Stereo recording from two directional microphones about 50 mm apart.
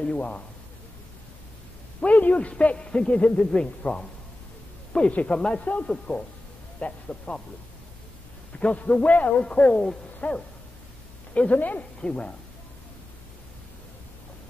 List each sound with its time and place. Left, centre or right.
0.0 s a man's voice: left
2.0 s a man's voice: left
3.8 s speech: left
4.9 s a man's voice: left
8.5 s a man's voice: left
12.0 s a man's voice: centre